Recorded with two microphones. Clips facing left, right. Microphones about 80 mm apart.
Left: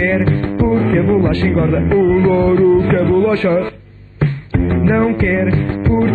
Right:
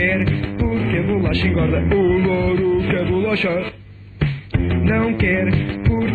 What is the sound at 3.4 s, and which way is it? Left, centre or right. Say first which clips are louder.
Music: left 6 dB; left.